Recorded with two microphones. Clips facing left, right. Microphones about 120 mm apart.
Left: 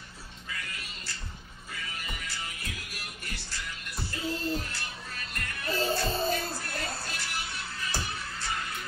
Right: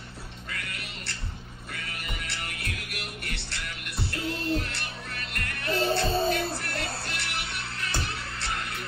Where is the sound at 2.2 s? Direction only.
65° right (ahead or behind).